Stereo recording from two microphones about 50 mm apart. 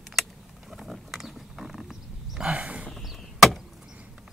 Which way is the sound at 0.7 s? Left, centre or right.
Centre.